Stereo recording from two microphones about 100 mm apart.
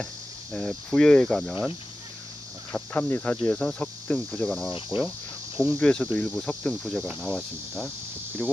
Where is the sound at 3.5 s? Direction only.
10° left (ahead or behind).